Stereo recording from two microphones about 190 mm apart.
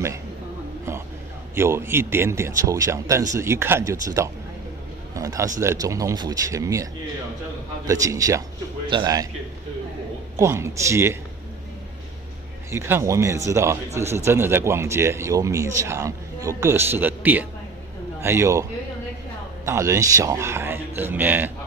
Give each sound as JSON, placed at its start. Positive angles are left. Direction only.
{"t": 1.5, "sound": "speech", "side_deg": -15}
{"t": 5.1, "sound": "a sound", "side_deg": -15}
{"t": 5.6, "sound": "a man's voice", "side_deg": -15}
{"t": 10.3, "sound": "speech", "side_deg": -15}
{"t": 12.7, "sound": "speech", "side_deg": -15}